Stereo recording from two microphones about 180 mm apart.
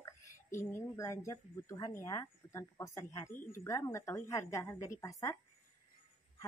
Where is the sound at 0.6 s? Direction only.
15° left (ahead or behind).